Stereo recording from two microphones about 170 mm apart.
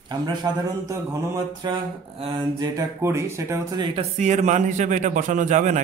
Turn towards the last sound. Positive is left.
turn(degrees=-45)  # may be behind; listen again after turning